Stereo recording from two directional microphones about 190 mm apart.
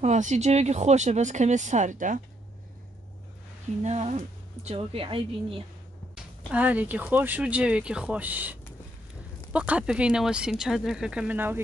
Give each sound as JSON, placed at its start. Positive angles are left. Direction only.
{"t": 0.0, "sound": "speech", "side_deg": -40}
{"t": 3.8, "sound": "speech", "side_deg": -35}
{"t": 6.1, "sound": "speech", "side_deg": -5}